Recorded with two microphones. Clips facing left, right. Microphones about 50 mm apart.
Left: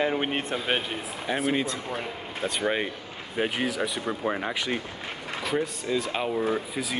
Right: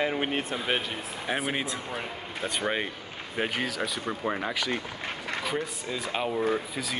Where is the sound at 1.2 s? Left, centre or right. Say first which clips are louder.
Left 4 dB; centre.